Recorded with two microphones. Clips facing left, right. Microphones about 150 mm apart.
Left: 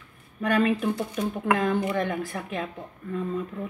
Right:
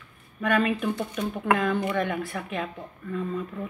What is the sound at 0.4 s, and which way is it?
Speech, 30° left (ahead or behind).